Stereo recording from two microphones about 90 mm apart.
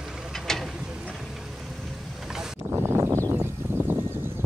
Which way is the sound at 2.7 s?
30° right (ahead or behind).